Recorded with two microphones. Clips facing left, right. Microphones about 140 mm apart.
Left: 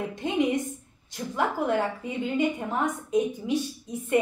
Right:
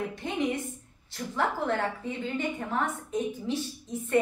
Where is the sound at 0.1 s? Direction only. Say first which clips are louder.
Left 4 dB; 20° left (ahead or behind).